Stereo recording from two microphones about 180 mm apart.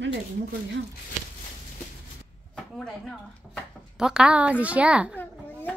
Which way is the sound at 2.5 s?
5° left (ahead or behind).